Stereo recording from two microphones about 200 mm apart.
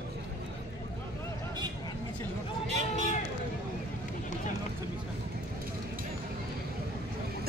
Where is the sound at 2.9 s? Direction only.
35° left (ahead or behind).